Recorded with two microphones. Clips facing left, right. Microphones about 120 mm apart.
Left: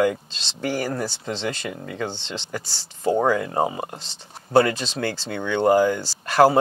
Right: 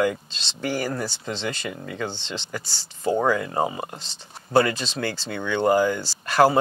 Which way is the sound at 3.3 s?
40° left (ahead or behind).